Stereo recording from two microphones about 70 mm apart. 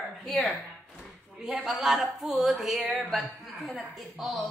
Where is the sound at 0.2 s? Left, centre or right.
Centre.